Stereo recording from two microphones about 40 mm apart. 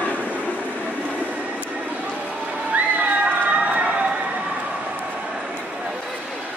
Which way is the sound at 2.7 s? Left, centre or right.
Right.